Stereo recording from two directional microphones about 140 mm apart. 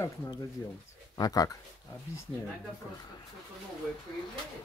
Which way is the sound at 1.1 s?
25° left (ahead or behind).